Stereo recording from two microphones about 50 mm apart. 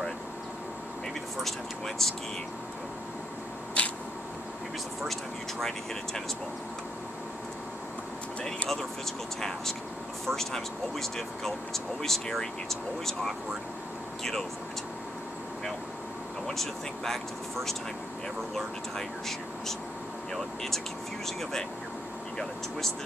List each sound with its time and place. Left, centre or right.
1.4 s speech: centre
3.8 s a sound: left
5.0 s speech: centre
8.6 s speech: centre
16.4 s speech: centre
18.5 s speech: centre